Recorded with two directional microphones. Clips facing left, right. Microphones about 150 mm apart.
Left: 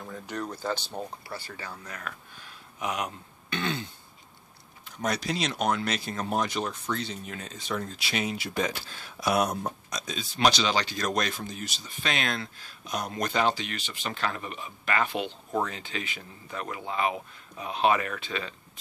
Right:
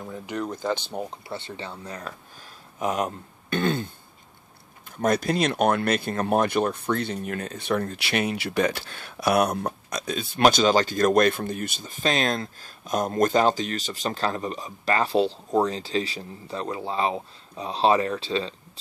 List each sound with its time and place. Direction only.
0.0 s speech: 10° right (ahead or behind); by 18.5 s 30° right (ahead or behind)